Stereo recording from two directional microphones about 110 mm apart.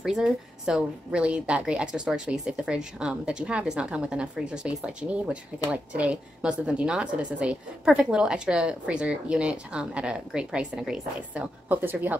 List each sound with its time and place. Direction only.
0.0 s a woman's voice: 5° right (ahead or behind)